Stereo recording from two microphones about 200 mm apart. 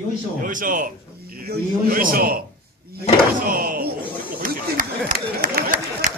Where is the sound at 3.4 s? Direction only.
45° right (ahead or behind).